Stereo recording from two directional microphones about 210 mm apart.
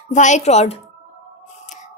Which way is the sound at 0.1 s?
35° left (ahead or behind).